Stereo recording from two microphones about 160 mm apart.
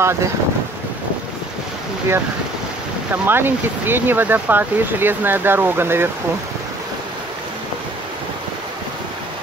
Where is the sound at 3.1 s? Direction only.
15° right (ahead or behind).